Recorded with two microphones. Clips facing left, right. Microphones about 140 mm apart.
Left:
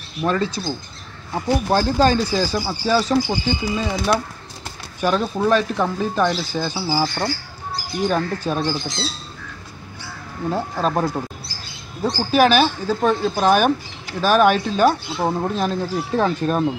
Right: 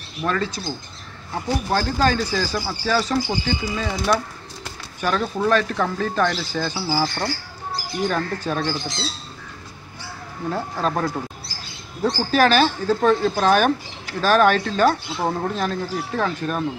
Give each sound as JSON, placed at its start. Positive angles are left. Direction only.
{"t": 0.2, "sound": "speech", "side_deg": 20}
{"t": 10.5, "sound": "speech", "side_deg": 20}
{"t": 15.4, "sound": "speech", "side_deg": 20}